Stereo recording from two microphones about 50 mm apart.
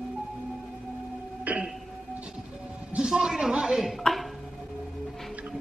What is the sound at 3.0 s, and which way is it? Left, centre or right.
Speech, centre.